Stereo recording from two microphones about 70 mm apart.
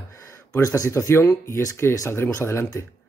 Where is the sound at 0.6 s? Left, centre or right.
Left.